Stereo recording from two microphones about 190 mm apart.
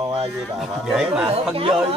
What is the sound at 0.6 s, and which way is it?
Speech, centre (ahead or behind).